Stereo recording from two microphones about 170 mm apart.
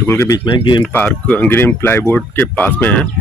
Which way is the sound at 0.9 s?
10° left (ahead or behind).